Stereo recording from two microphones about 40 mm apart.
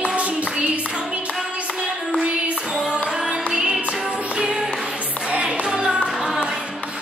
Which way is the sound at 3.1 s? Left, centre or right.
Centre.